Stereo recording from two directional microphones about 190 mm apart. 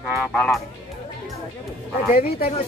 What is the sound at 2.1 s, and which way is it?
Speech, 50° left (ahead or behind).